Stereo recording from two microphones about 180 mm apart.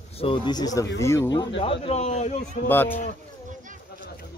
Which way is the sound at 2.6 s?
10° left (ahead or behind).